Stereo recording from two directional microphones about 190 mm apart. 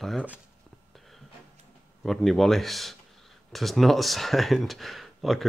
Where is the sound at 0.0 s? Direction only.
5° right (ahead or behind).